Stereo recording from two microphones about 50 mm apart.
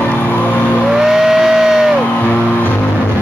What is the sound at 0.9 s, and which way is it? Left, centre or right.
Vehicle, centre.